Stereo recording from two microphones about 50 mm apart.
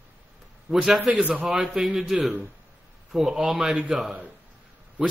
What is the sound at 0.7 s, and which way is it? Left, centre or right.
Speech, centre.